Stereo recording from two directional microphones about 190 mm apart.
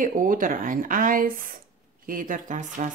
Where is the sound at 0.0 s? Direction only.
45° right (ahead or behind).